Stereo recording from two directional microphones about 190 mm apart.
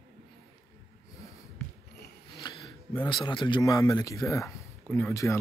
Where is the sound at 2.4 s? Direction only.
25° left (ahead or behind).